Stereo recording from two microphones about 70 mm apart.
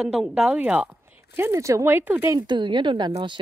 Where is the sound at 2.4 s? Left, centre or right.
Right.